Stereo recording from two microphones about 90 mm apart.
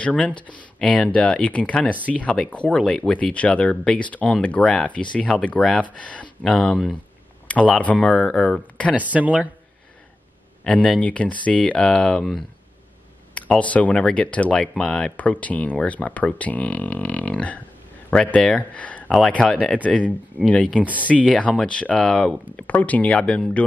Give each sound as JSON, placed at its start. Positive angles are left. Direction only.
{"t": 0.0, "sound": "speech", "side_deg": 15}
{"t": 8.9, "sound": "speech", "side_deg": -15}
{"t": 10.6, "sound": "speech", "side_deg": 10}
{"t": 13.3, "sound": "speech", "side_deg": 15}
{"t": 22.6, "sound": "speech", "side_deg": 15}